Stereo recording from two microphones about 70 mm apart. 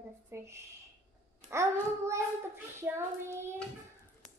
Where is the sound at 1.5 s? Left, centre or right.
Right.